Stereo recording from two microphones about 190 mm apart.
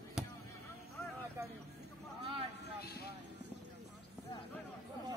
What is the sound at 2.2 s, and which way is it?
Vehicle, 30° right (ahead or behind).